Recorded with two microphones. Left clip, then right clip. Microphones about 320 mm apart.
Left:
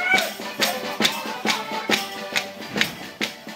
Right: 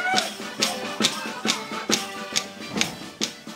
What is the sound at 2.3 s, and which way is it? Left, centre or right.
Music, left.